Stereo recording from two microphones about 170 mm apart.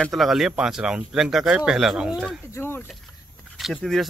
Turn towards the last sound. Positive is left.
turn(degrees=0)  # may be behind; listen again after turning